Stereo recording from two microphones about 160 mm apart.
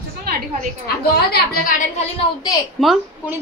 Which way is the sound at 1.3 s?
70° left (ahead or behind).